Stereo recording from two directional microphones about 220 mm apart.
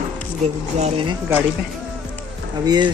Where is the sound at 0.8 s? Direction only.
25° right (ahead or behind).